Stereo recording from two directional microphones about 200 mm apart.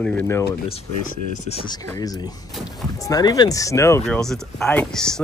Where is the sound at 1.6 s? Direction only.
20° left (ahead or behind).